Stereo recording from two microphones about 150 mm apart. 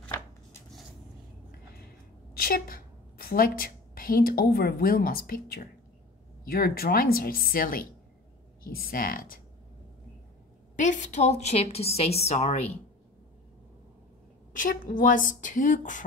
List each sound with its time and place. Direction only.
2.3 s a woman's voice: 75° left (ahead or behind)
10.8 s a woman's voice: 55° left (ahead or behind)
14.5 s speech: 65° left (ahead or behind)